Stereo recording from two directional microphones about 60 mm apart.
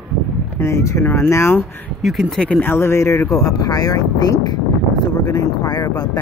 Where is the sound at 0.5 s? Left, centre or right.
Left.